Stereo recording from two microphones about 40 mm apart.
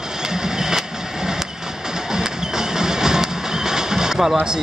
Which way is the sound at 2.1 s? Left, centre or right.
Centre.